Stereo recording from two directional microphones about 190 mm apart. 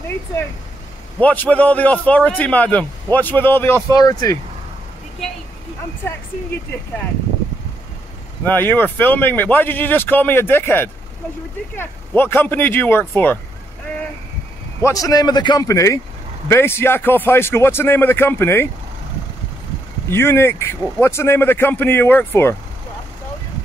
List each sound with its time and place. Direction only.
1.2 s a man's voice: 10° left (ahead or behind)
8.5 s a man's voice: 10° left (ahead or behind)
14.8 s a man's voice: 15° left (ahead or behind)
20.1 s a man's voice: 15° left (ahead or behind)